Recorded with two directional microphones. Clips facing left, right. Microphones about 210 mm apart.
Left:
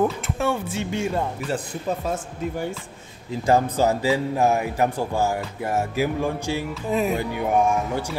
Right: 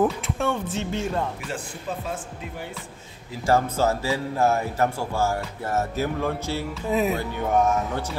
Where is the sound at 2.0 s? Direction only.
45° left (ahead or behind).